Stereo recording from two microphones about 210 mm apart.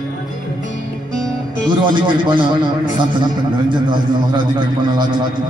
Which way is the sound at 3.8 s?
20° right (ahead or behind).